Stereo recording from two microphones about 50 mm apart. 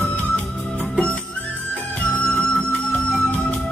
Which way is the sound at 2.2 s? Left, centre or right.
Centre.